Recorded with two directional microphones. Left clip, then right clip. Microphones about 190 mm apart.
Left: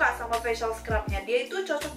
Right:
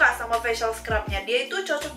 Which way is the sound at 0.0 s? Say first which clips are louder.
Right 5 dB; 5° left (ahead or behind).